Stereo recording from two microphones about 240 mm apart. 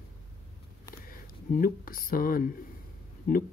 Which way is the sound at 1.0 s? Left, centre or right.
Left.